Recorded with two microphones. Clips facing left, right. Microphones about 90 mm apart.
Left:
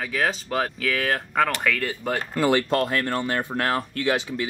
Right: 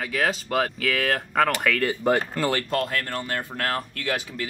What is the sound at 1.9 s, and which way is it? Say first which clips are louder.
Speech: right 5 dB; 20° right (ahead or behind).